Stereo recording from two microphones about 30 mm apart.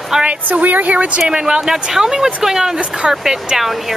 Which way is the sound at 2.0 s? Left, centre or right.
Right.